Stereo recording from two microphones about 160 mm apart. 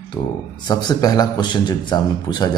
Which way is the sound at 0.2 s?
25° left (ahead or behind).